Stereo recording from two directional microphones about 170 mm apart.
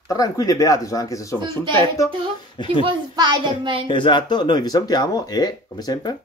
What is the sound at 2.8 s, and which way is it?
A child's voice, 25° right (ahead or behind).